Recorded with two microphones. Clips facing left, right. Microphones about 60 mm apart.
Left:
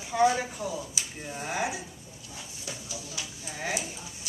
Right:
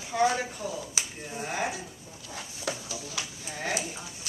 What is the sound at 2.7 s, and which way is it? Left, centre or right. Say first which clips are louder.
Speech: right 8 dB; right.